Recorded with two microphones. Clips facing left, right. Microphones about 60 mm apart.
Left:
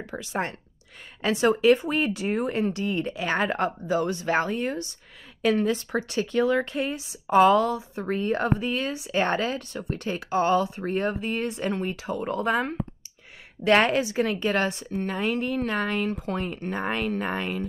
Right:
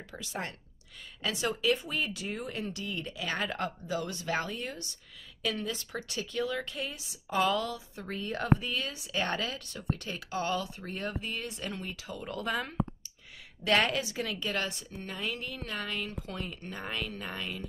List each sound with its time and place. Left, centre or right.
0.0 s speech: left